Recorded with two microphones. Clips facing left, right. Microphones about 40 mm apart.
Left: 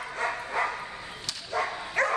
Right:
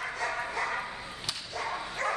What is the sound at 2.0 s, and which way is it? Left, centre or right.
Dog, left.